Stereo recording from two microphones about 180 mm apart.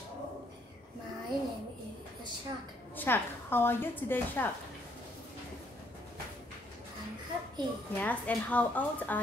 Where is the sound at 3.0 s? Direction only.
10° left (ahead or behind).